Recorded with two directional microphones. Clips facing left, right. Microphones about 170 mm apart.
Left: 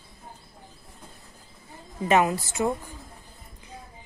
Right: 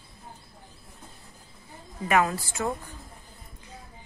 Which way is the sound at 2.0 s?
25° left (ahead or behind).